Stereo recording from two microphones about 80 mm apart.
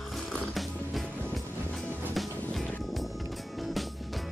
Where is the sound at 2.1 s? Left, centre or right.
Centre.